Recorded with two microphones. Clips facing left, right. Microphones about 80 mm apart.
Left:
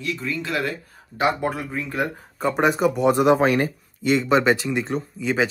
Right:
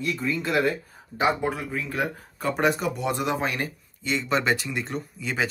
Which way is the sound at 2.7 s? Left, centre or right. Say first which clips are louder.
Left 8 dB; left.